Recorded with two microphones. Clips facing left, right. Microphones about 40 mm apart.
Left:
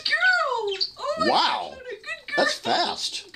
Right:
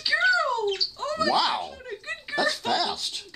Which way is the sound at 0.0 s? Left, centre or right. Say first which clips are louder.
Left 1 dB; centre.